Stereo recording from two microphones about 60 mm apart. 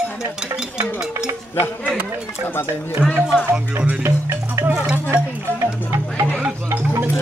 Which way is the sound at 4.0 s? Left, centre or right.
Right.